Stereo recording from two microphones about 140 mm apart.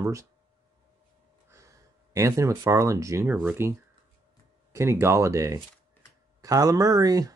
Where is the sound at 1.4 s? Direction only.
20° right (ahead or behind).